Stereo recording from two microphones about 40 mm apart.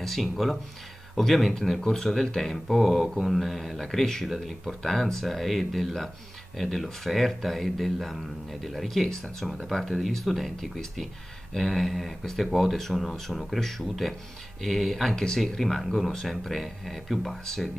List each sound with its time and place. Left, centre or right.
0.0 s speech: centre
1.5 s speech: centre
11.9 s speech: centre
15.4 s speech: centre